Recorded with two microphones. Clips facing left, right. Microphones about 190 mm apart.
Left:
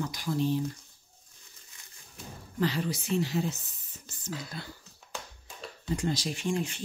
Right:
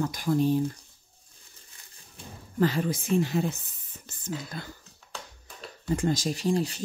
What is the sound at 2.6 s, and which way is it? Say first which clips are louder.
A woman's voice: right 4 dB; 50° right (ahead or behind).